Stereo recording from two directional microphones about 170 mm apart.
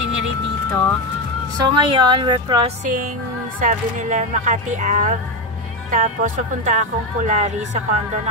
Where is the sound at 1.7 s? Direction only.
30° right (ahead or behind).